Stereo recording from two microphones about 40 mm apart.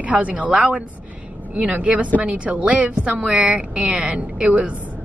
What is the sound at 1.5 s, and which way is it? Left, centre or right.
A woman's voice, right.